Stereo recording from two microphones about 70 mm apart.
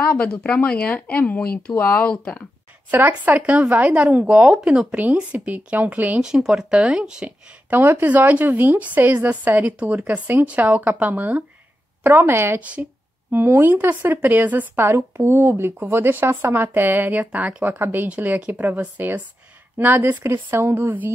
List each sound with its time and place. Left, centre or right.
0.0 s speech: centre
2.9 s a woman's voice: right
6.2 s speech: centre
7.7 s a woman's voice: right
17.7 s a woman's voice: right